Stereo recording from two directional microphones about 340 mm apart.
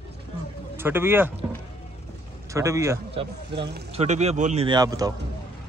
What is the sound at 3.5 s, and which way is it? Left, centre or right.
Speech, right.